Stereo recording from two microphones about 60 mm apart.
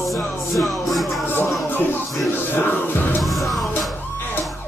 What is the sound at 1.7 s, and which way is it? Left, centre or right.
Music, left.